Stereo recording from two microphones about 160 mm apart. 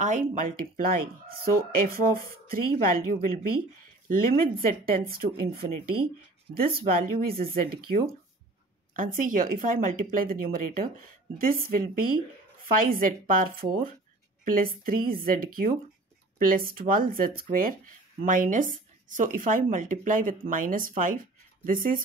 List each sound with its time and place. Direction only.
0.0 s speech: 50° right (ahead or behind)